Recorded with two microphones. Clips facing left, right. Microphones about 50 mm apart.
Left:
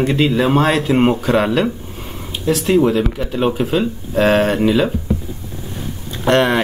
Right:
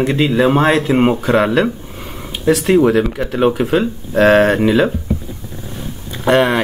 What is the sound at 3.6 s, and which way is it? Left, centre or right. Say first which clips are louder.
Speech: right 2 dB; right.